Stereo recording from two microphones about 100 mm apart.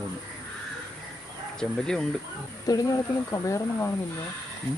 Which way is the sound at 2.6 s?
35° left (ahead or behind).